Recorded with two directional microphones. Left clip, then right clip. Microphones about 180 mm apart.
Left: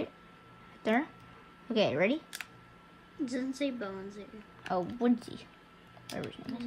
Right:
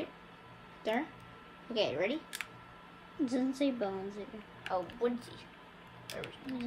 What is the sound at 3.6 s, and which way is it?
Speech, 5° right (ahead or behind).